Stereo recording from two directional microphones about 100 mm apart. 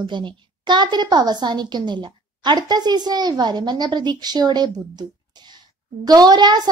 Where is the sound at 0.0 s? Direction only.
50° right (ahead or behind).